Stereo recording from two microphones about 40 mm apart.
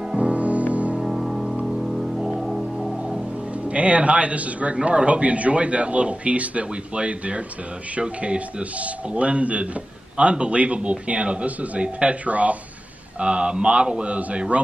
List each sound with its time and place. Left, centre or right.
0.2 s music: right
0.9 s music: centre
3.6 s a man's voice: right